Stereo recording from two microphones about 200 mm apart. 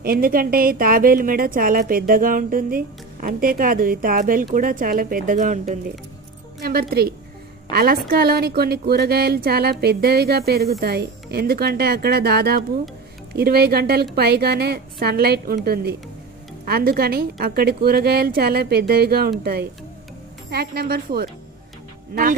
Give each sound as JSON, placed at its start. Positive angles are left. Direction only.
{"t": 0.0, "sound": "speech", "side_deg": -45}